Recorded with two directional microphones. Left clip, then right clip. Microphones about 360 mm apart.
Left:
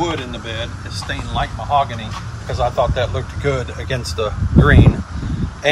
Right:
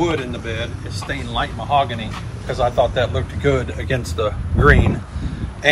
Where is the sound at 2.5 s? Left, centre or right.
Centre.